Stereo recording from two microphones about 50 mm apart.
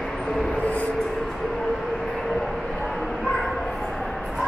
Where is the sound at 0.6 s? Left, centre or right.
Left.